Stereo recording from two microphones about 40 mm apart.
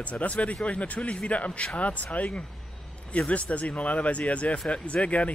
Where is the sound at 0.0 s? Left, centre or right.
Left.